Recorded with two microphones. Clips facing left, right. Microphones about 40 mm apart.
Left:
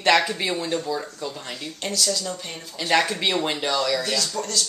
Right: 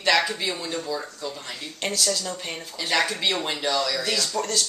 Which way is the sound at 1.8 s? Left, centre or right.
Centre.